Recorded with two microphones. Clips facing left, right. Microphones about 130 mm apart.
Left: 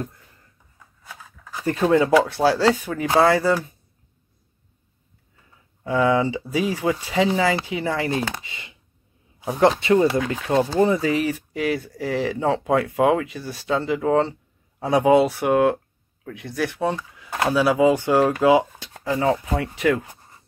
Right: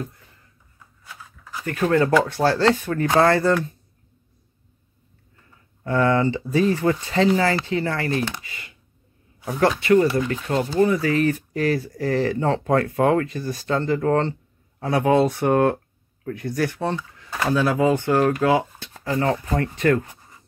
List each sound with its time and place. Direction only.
1.6 s speech: 30° left (ahead or behind)
1.9 s speech: 10° left (ahead or behind)
5.4 s speech: 10° left (ahead or behind)
11.3 s speech: 5° left (ahead or behind)